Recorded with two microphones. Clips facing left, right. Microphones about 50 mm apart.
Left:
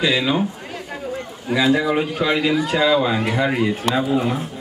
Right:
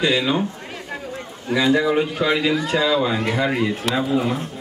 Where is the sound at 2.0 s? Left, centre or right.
Centre.